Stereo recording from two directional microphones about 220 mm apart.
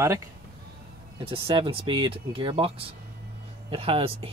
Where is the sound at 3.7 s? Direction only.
25° right (ahead or behind).